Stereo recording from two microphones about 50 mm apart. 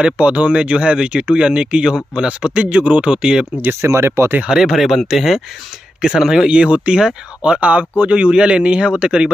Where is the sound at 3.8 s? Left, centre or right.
Right.